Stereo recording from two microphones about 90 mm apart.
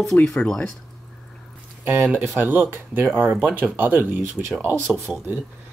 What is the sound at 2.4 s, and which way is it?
Speech, 20° right (ahead or behind).